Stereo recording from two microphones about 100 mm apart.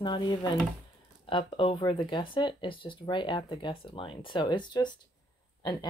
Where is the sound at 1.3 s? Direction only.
60° left (ahead or behind).